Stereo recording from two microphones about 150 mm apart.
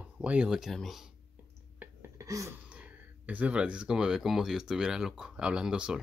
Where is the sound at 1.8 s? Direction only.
20° right (ahead or behind).